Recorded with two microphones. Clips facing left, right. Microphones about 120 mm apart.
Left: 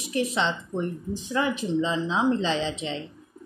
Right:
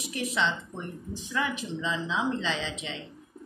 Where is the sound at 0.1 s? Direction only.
30° left (ahead or behind).